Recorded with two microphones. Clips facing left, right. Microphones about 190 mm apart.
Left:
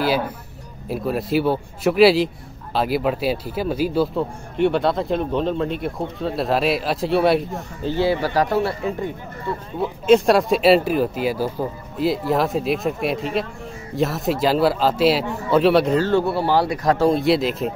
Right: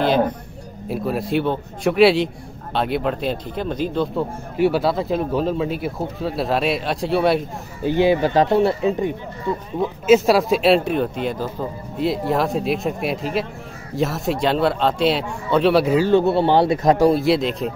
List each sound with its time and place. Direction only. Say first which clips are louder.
0.8 s speech: even; centre (ahead or behind)
7.8 s a man's voice: right 4 dB; 15° right (ahead or behind)
10.0 s speech: even; 5° right (ahead or behind)
17.1 s speech: even; centre (ahead or behind)